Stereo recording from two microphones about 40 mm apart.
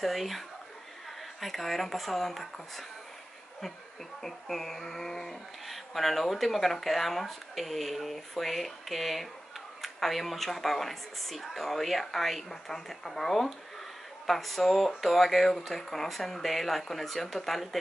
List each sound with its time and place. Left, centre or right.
0.0 s speech: centre
1.4 s speech: centre
4.2 s speech: centre